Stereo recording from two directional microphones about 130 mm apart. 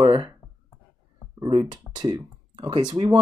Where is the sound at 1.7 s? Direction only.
30° right (ahead or behind).